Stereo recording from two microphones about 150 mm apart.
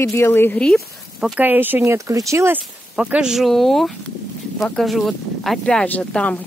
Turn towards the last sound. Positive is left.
turn(degrees=10)  # may be behind; listen again after turning